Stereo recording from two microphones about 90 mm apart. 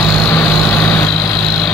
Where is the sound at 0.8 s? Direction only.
5° left (ahead or behind).